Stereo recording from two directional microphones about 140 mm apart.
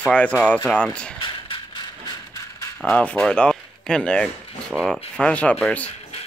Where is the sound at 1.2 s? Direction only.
35° left (ahead or behind).